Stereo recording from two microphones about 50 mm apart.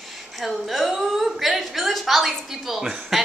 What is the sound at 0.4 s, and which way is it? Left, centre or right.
A woman's voice, centre.